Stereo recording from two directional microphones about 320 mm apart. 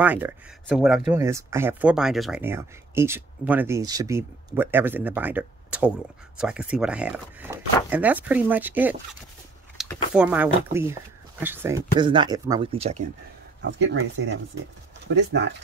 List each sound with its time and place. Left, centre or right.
0.0 s speech: centre
13.6 s speech: right